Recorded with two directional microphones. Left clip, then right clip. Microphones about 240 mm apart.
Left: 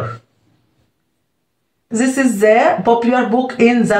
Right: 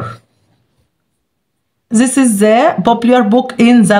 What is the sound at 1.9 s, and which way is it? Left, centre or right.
Speech, right.